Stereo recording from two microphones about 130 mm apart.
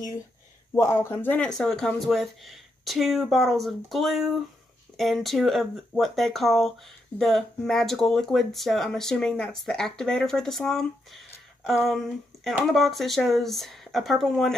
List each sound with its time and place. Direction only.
0.7 s speech: 20° left (ahead or behind)
1.5 s speech: 5° left (ahead or behind)